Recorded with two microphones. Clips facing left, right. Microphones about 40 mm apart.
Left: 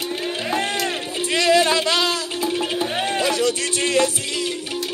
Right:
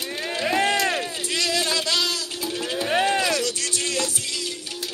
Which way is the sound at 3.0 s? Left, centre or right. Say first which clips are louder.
Left 2 dB; left.